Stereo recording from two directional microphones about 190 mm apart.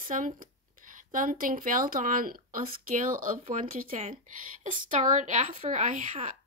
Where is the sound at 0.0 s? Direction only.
45° right (ahead or behind).